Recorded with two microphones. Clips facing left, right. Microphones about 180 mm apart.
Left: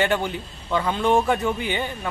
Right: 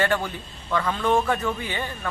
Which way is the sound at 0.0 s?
20° left (ahead or behind).